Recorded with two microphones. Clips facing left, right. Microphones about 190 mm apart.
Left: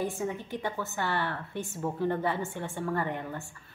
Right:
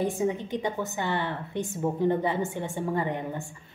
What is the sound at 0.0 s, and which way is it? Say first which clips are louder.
Speech: right 5 dB; 15° right (ahead or behind).